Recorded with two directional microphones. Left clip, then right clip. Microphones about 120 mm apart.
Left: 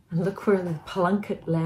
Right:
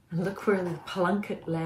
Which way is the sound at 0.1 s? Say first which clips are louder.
Left 4 dB; 15° left (ahead or behind).